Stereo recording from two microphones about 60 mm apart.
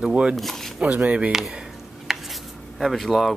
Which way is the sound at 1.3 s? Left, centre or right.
Centre.